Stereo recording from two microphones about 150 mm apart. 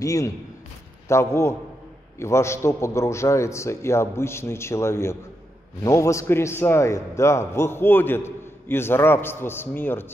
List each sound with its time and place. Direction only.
0.0 s a man's voice: 20° left (ahead or behind)